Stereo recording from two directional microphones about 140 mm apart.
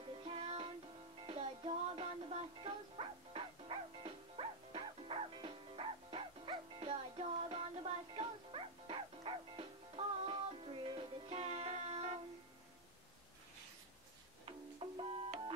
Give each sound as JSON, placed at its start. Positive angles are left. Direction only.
{"t": 0.2, "sound": "music", "side_deg": -45}
{"t": 14.8, "sound": "music", "side_deg": -40}